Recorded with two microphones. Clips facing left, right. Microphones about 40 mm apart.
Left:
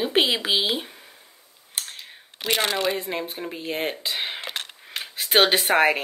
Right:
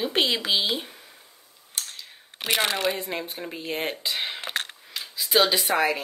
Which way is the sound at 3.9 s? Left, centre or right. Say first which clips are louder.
Left 1 dB; centre.